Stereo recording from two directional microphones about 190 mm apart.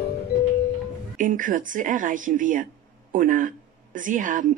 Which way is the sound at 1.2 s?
45° right (ahead or behind).